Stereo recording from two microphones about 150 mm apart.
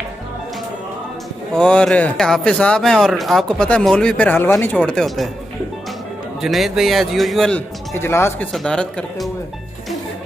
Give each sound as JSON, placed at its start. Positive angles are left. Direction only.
{"t": 1.5, "sound": "speech", "side_deg": 5}
{"t": 6.4, "sound": "speech", "side_deg": 0}
{"t": 7.9, "sound": "speech", "side_deg": 15}
{"t": 8.5, "sound": "speech", "side_deg": 5}